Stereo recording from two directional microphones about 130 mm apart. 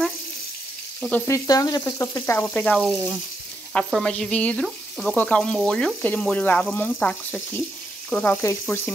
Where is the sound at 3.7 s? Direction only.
5° left (ahead or behind).